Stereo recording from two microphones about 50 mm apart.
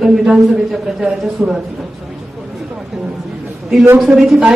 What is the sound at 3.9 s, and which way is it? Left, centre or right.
Speech, centre.